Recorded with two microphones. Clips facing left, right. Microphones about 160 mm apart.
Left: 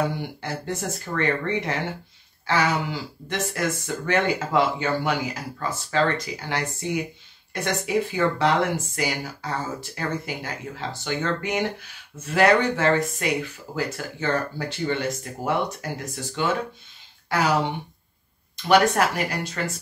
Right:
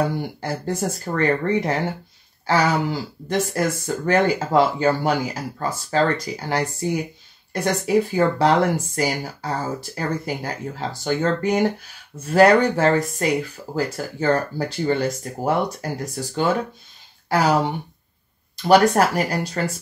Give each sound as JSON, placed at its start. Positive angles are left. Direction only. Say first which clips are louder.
{"t": 0.0, "sound": "speech", "louder": "right 3 dB", "side_deg": -40}